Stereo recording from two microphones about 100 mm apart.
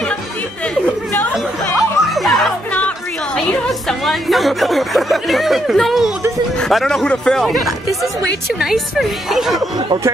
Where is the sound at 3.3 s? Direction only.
5° left (ahead or behind).